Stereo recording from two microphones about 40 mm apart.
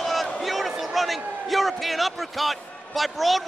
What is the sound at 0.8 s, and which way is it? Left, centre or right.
Speech, centre.